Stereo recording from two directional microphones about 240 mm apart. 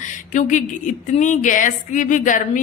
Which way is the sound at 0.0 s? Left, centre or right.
Left.